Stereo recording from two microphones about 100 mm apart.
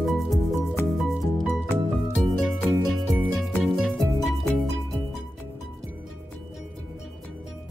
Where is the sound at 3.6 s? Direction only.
5° left (ahead or behind).